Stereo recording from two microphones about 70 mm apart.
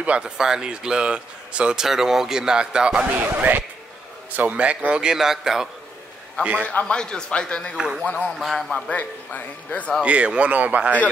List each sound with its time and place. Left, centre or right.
0.0 s speech: centre
3.2 s a man's voice: right; by 5.7 s centre
6.6 s a man's voice: left
7.7 s speech: centre
8.0 s speech: centre
8.4 s speech: centre
8.9 s speech: left
10.0 s a man's voice: centre